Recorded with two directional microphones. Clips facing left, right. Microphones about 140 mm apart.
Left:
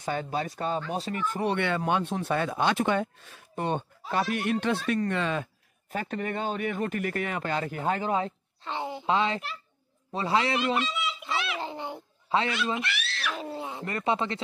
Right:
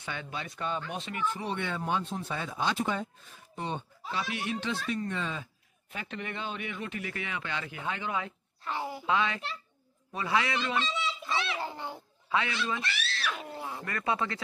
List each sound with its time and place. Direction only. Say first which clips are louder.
0.0 s speech: left 8 dB; 40° left (ahead or behind)
1.5 s speech: left 8 dB; 70° left (ahead or behind); by 4.7 s 55° left (ahead or behind)
4.8 s speech: left 6 dB; 70° left (ahead or behind)
5.9 s a man's voice: left 7 dB; 45° left (ahead or behind)
8.6 s speech: left 3 dB; 25° left (ahead or behind)
10.8 s speech: left 2 dB; 30° right (ahead or behind)
11.5 s a sound: left 2 dB; 20° left (ahead or behind)
12.3 s speech: left 4 dB; 30° left (ahead or behind)